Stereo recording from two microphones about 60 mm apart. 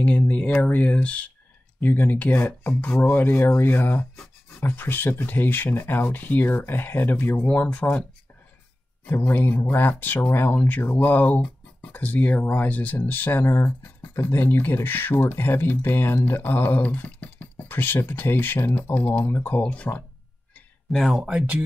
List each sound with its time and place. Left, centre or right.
0.0 s speech: left
7.4 s speech: left
9.1 s speech: left
20.9 s speech: centre